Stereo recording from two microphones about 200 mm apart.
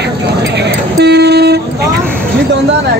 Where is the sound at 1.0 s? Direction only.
55° right (ahead or behind).